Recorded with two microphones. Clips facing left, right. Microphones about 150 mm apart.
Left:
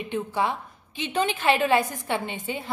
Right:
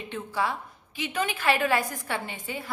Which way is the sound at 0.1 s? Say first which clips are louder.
Left 3 dB; 20° left (ahead or behind).